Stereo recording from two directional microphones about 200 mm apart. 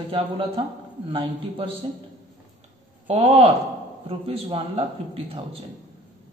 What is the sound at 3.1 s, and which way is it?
Speech, 30° right (ahead or behind).